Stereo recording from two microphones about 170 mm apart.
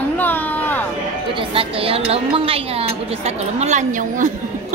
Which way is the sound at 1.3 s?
35° right (ahead or behind).